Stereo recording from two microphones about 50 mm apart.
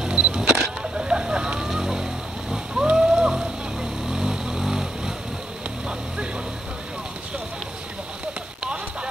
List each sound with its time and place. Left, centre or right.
0.0 s camera: centre
2.5 s whale vocalization: centre
4.1 s vehicle: centre